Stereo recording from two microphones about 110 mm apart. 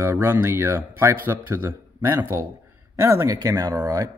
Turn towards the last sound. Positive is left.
turn(degrees=-30)  # may be behind; listen again after turning